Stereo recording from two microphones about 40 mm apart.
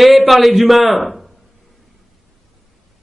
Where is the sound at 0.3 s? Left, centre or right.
Centre.